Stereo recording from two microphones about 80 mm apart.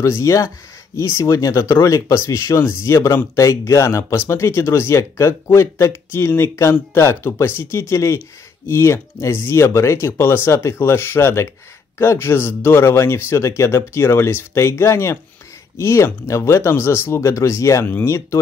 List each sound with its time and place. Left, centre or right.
0.0 s speech: left